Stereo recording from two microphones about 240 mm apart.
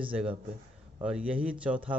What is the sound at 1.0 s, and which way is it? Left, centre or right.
Speech, centre.